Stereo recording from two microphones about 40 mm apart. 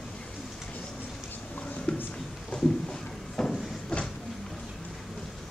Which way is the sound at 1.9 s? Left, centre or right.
Left.